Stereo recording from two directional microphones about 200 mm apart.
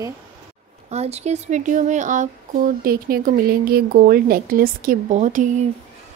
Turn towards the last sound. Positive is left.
turn(degrees=-40)  # may be behind; listen again after turning